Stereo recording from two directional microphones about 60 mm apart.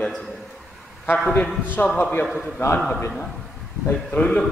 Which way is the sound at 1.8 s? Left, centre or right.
Left.